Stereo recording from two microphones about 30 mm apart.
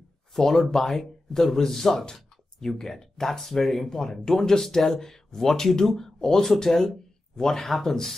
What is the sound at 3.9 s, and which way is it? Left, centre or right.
Speech, centre.